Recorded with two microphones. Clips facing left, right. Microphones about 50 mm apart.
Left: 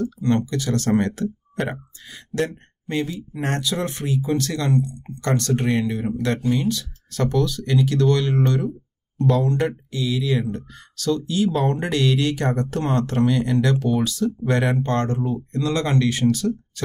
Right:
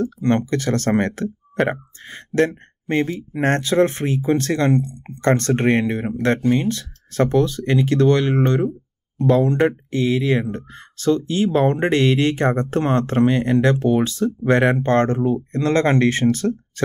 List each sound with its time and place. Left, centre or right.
0.0 s speech: right
6.4 s speech: right
6.7 s speech: right